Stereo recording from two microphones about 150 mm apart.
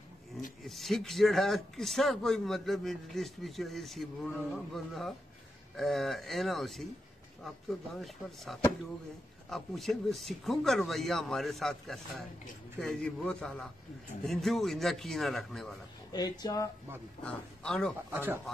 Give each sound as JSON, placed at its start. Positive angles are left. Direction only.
{"t": 0.7, "sound": "a man's voice", "side_deg": 0}
{"t": 16.1, "sound": "speech", "side_deg": 25}
{"t": 17.2, "sound": "speech", "side_deg": 5}
{"t": 18.1, "sound": "speech", "side_deg": -15}